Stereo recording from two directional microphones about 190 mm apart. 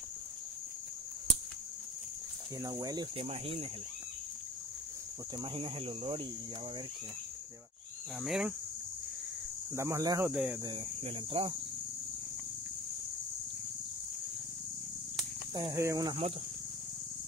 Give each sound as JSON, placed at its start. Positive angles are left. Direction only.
{"t": 2.6, "sound": "speech", "side_deg": -20}
{"t": 3.3, "sound": "speech", "side_deg": -30}
{"t": 5.4, "sound": "speech", "side_deg": -30}
{"t": 8.2, "sound": "cricket", "side_deg": 0}
{"t": 9.8, "sound": "speech", "side_deg": -15}
{"t": 10.3, "sound": "cricket", "side_deg": -5}
{"t": 10.6, "sound": "speech", "side_deg": -30}
{"t": 15.5, "sound": "speech", "side_deg": -20}